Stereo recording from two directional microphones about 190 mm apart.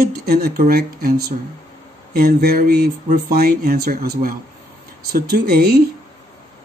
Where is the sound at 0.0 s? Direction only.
55° right (ahead or behind).